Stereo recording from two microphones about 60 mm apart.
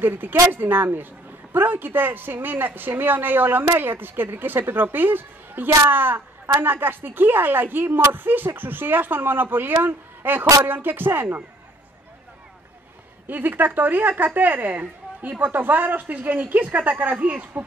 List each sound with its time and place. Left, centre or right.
0.0 s a woman's voice: right
13.3 s a woman's voice: right